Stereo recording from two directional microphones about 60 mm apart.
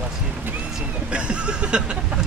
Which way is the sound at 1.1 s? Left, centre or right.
Centre.